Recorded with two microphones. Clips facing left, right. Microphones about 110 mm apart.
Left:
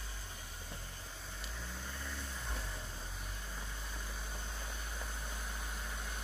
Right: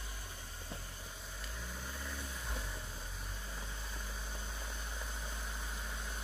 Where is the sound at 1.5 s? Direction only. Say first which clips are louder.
Right 1 dB; 5° right (ahead or behind).